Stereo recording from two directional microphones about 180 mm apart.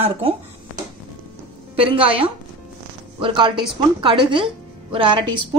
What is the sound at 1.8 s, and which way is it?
A woman's voice, 30° right (ahead or behind).